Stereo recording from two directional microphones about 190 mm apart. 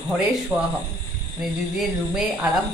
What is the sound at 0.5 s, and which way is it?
A woman's voice, 5° right (ahead or behind).